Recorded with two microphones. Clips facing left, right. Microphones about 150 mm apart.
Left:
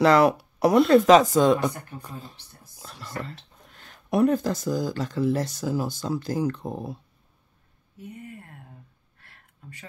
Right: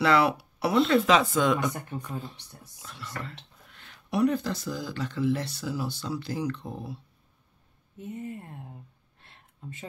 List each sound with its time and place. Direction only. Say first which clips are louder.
0.0 s speech: left 5 dB; 40° left (ahead or behind)
8.0 s speech: right 4 dB; 25° right (ahead or behind)
9.2 s a sound: right 5 dB; 25° right (ahead or behind)